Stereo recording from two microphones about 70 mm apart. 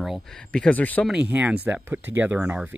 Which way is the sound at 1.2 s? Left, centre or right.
Right.